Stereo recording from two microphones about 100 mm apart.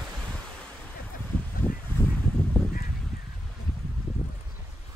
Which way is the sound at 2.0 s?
25° left (ahead or behind).